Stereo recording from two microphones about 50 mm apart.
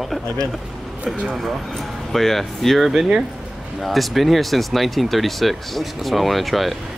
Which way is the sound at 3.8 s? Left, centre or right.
Centre.